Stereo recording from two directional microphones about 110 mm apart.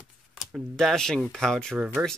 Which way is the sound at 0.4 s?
Centre (ahead or behind).